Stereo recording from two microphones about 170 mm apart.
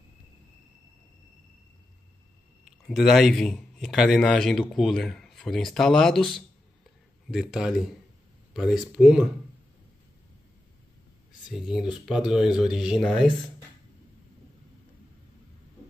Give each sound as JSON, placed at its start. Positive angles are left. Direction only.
{"t": 2.8, "sound": "a man's voice", "side_deg": 0}
{"t": 11.5, "sound": "a man's voice", "side_deg": 0}